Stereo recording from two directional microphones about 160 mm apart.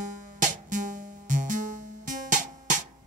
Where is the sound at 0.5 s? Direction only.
55° right (ahead or behind).